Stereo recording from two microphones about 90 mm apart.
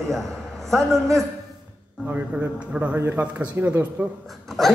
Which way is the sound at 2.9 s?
25° right (ahead or behind).